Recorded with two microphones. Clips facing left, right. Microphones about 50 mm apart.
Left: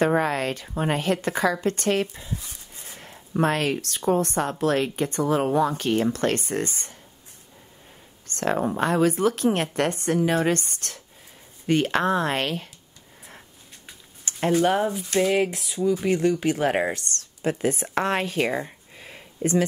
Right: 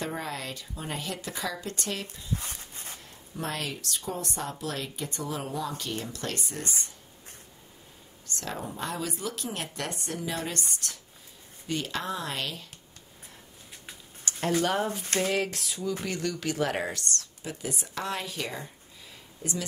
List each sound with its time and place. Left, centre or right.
0.0 s speech: left
2.3 s a sound: right
3.0 s speech: left
8.4 s speech: left
14.3 s a sound: left
14.6 s speech: left
15.5 s speech: centre
16.0 s speech: left
17.2 s speech: left